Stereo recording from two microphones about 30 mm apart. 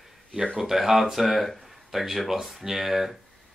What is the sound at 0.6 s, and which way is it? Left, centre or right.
Speech, centre.